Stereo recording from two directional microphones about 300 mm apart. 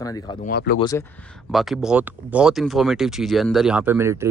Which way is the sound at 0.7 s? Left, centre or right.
Centre.